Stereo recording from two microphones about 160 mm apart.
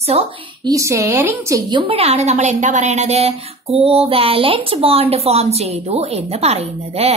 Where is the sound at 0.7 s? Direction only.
20° right (ahead or behind).